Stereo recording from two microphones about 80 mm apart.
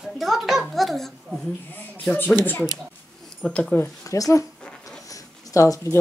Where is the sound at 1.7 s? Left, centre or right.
Left.